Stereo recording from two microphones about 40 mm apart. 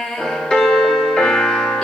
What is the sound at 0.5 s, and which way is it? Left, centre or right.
Music, centre.